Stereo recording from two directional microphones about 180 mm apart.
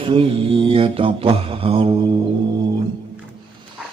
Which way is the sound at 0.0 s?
30° right (ahead or behind).